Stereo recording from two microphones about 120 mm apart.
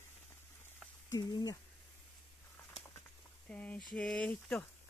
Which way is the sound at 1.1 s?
30° left (ahead or behind).